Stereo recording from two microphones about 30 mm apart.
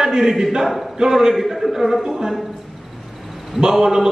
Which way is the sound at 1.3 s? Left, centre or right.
Centre.